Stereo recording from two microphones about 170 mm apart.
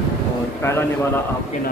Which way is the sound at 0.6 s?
15° left (ahead or behind).